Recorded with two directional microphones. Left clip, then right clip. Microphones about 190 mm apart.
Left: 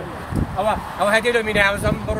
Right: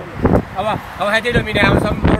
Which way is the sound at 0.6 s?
5° left (ahead or behind).